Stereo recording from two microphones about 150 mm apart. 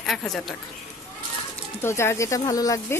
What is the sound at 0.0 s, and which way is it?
Speech, centre (ahead or behind).